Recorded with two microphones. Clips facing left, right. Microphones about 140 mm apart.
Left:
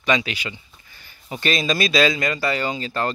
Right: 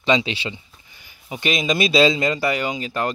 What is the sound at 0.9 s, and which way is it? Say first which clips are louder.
A man's voice: even; 10° right (ahead or behind).